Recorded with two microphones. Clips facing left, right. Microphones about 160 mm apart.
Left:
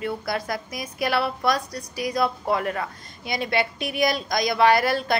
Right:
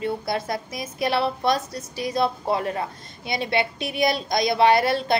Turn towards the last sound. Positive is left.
turn(degrees=-25)  # may be behind; listen again after turning